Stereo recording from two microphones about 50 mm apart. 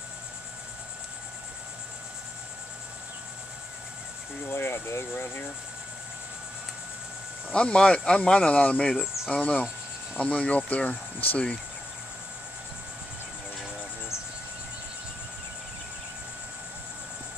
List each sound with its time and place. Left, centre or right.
4.5 s speech: left
7.5 s speech: left